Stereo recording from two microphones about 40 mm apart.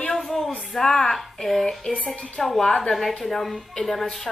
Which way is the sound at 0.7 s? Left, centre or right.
Centre.